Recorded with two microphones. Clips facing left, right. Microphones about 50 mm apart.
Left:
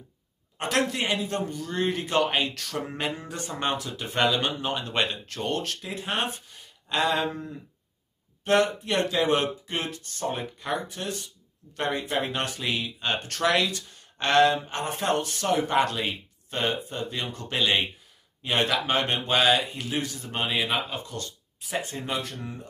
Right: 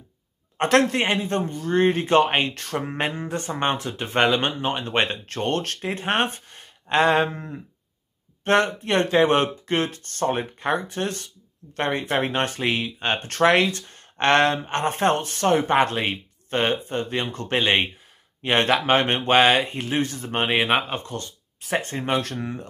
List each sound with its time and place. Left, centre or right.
0.6 s speech: right